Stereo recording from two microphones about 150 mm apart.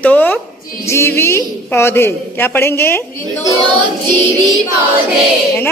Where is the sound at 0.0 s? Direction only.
10° left (ahead or behind).